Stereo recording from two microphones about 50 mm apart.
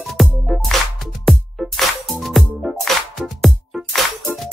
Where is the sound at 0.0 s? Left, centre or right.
Centre.